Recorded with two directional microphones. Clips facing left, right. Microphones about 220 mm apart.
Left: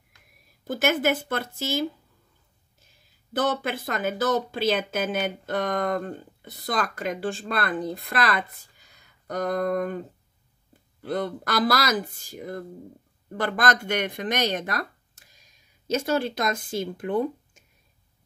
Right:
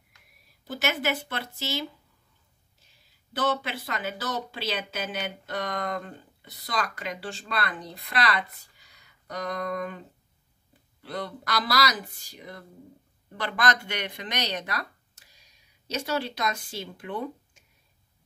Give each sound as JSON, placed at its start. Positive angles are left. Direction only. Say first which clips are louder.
{"t": 0.7, "sound": "speech", "louder": "left 6 dB", "side_deg": 50}
{"t": 3.3, "sound": "speech", "louder": "left 3 dB", "side_deg": 50}